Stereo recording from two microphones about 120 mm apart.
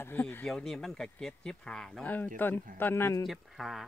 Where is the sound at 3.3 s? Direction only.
Centre (ahead or behind).